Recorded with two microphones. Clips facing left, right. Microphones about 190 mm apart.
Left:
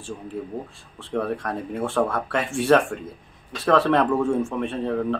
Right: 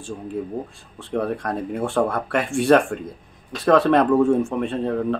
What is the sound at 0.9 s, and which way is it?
Speech, 15° right (ahead or behind).